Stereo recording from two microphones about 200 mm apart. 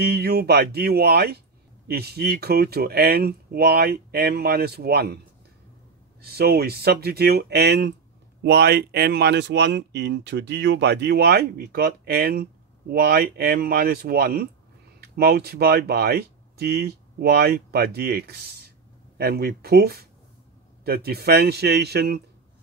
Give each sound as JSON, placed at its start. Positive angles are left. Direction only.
{"t": 0.0, "sound": "speech", "side_deg": -55}
{"t": 6.2, "sound": "speech", "side_deg": -50}